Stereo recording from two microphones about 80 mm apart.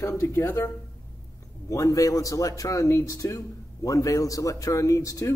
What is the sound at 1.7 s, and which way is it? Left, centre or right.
Speech, left.